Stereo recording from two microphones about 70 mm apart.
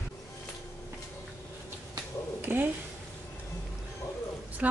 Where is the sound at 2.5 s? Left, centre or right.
Right.